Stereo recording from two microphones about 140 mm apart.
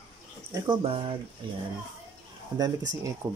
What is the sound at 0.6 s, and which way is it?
Speech, 40° right (ahead or behind).